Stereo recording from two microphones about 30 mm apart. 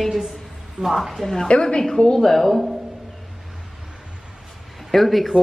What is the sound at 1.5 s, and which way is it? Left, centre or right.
Speech, left.